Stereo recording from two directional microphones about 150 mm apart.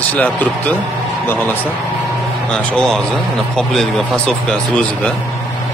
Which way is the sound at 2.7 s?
5° left (ahead or behind).